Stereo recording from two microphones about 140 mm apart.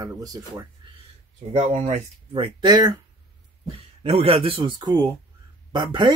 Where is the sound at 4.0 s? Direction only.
45° right (ahead or behind).